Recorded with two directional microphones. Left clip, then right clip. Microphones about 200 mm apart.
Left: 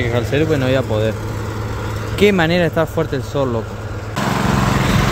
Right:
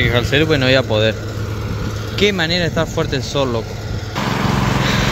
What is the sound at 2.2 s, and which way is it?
Speech, 15° left (ahead or behind).